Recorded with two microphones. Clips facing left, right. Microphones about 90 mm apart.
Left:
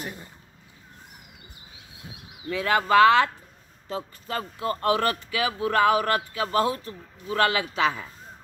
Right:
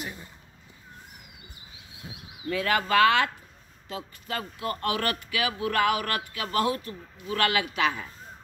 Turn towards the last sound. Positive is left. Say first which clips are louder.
# left 2 dB
turn(degrees=25)  # may be behind; listen again after turning